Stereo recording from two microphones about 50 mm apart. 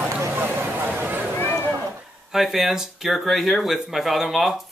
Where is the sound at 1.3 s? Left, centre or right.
Left.